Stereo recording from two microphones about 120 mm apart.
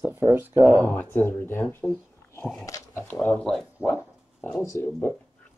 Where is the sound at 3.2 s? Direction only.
10° left (ahead or behind).